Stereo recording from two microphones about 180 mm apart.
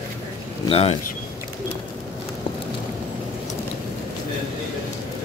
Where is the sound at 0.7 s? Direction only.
35° left (ahead or behind).